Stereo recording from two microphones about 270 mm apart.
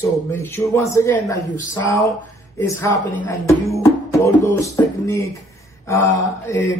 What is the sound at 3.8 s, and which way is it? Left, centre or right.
Music, centre.